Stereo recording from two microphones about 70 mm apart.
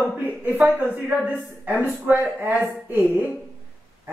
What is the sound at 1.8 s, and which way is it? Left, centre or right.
Speech, right.